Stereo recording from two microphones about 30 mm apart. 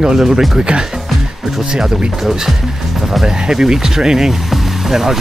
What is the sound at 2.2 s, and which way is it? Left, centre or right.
Speech, centre.